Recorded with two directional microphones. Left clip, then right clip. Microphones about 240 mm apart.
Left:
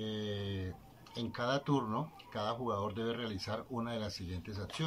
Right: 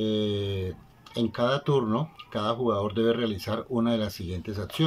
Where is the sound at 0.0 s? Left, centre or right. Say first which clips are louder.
Right 13 dB; right.